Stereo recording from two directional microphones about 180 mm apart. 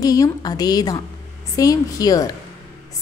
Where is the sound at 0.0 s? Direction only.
20° left (ahead or behind).